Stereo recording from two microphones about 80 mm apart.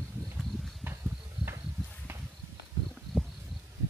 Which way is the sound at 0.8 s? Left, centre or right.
Right.